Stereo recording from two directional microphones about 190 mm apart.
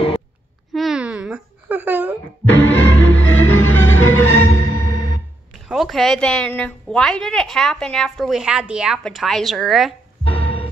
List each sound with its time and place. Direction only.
0.7 s a sound: centre (ahead or behind)
2.4 s music: 10° left (ahead or behind)
5.7 s a woman's voice: centre (ahead or behind)
10.4 s music: 30° left (ahead or behind)